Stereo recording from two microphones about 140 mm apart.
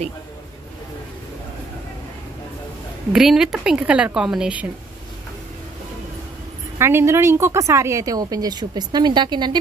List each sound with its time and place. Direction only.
3.1 s speech: 5° right (ahead or behind)
6.8 s a woman's voice: 15° right (ahead or behind)